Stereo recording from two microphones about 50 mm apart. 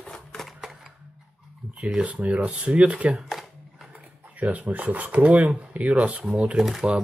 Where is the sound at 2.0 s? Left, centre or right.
Right.